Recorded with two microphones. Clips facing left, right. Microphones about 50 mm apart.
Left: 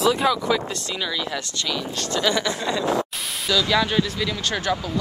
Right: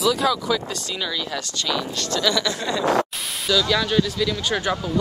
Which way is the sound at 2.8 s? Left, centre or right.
Right.